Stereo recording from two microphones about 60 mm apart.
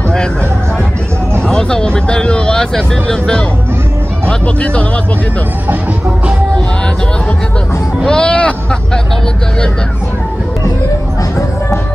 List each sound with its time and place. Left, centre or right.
1.5 s speech: centre
8.0 s speech: centre